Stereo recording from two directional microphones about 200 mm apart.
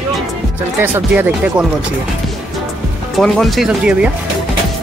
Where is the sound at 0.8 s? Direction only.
10° right (ahead or behind).